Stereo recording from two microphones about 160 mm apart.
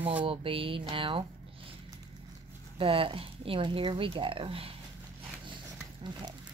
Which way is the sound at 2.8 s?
35° right (ahead or behind).